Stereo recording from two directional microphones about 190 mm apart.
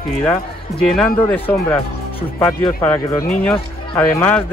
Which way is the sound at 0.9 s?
5° left (ahead or behind).